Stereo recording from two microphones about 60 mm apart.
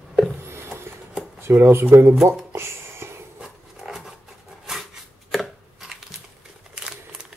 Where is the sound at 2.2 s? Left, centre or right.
Right.